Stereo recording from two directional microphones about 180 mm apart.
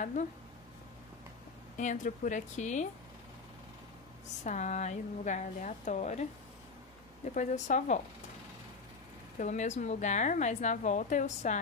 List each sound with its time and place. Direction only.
0.0 s a woman's voice: 45° left (ahead or behind)
1.8 s a woman's voice: 45° left (ahead or behind)
4.5 s a woman's voice: 40° left (ahead or behind)
7.3 s a woman's voice: 40° left (ahead or behind)
9.4 s a woman's voice: 40° left (ahead or behind)